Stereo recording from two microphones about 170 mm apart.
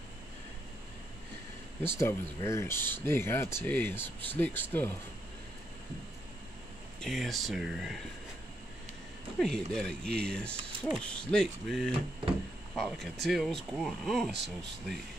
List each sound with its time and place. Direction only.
1.9 s speech: 15° left (ahead or behind)
7.0 s speech: centre (ahead or behind)
9.4 s speech: 5° left (ahead or behind)
14.3 s speech: 90° right